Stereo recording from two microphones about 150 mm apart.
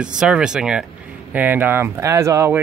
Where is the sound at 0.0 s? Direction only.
5° right (ahead or behind).